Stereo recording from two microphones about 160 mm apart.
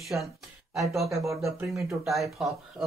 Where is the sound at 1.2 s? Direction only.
20° right (ahead or behind).